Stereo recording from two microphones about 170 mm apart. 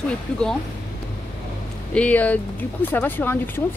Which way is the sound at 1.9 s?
10° left (ahead or behind).